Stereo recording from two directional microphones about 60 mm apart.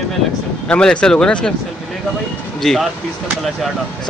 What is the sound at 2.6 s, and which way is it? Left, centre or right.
Speech, centre.